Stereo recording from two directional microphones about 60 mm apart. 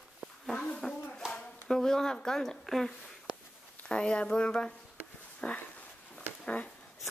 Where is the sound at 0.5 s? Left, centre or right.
Centre.